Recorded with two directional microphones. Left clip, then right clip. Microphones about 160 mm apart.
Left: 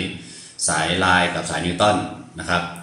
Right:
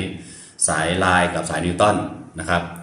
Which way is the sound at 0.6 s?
20° right (ahead or behind).